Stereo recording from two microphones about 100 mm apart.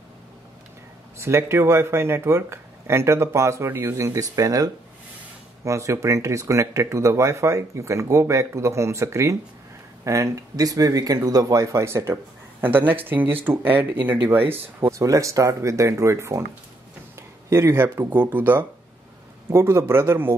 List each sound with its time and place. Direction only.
1.1 s speech: 25° right (ahead or behind)
14.9 s speech: 35° right (ahead or behind)
17.5 s speech: 25° right (ahead or behind)